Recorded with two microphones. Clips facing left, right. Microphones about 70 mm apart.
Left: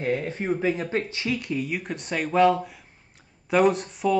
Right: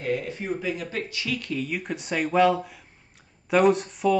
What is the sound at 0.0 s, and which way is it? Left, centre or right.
Speech, left.